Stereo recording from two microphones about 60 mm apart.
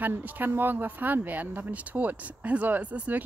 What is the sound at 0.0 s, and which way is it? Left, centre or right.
Speech, right.